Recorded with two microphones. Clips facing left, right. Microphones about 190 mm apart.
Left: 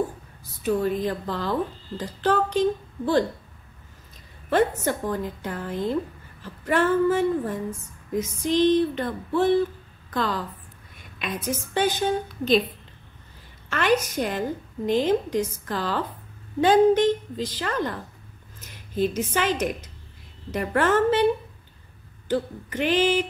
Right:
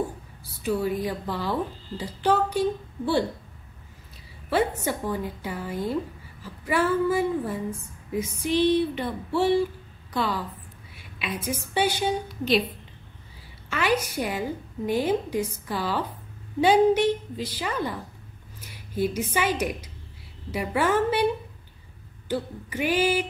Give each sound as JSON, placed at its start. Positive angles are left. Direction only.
{"t": 0.4, "sound": "speech", "side_deg": -10}
{"t": 4.5, "sound": "speech", "side_deg": -10}
{"t": 13.7, "sound": "a woman's voice", "side_deg": -10}
{"t": 22.3, "sound": "speech", "side_deg": -10}